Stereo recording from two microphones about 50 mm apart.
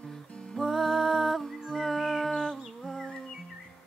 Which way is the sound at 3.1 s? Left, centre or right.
Centre.